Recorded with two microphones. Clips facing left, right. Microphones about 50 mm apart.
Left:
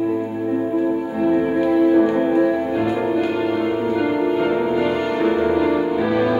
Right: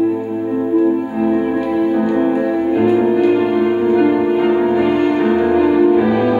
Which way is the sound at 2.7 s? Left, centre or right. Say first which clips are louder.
Right 6 dB; right.